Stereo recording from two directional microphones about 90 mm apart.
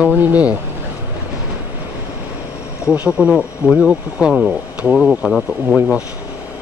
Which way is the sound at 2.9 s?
15° right (ahead or behind).